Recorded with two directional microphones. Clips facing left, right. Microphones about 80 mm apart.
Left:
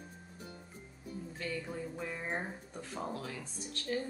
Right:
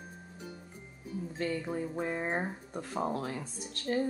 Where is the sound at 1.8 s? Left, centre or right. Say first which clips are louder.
Right 7 dB; right.